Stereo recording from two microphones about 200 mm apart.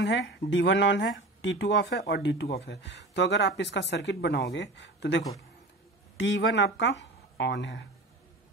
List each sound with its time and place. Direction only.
0.0 s speech: 60° left (ahead or behind)